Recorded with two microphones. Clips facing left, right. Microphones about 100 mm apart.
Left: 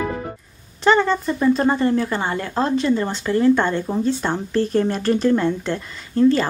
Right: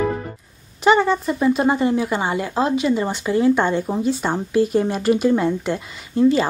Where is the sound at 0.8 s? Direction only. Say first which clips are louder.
Right 1 dB; 10° right (ahead or behind).